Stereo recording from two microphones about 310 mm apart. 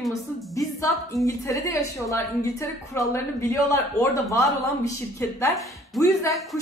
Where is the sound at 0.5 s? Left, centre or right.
Centre.